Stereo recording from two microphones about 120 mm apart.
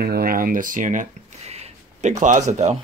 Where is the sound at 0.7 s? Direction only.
90° right.